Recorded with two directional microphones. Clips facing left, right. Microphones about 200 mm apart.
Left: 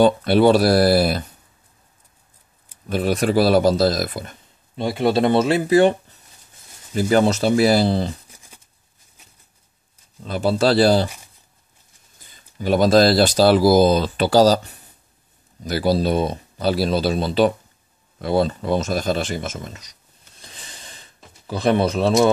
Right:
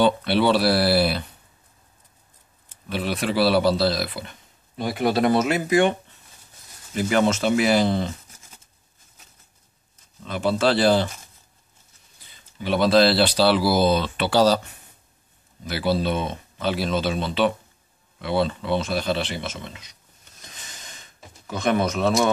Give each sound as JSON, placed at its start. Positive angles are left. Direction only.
{"t": 0.0, "sound": "speech", "side_deg": 45}
{"t": 2.9, "sound": "speech", "side_deg": 45}
{"t": 4.7, "sound": "speech", "side_deg": 25}
{"t": 10.2, "sound": "speech", "side_deg": 35}
{"t": 12.3, "sound": "speech", "side_deg": 45}